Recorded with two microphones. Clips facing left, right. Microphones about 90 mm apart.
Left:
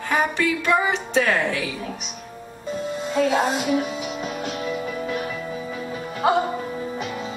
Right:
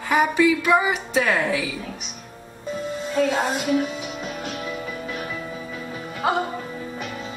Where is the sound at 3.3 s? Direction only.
15° left (ahead or behind).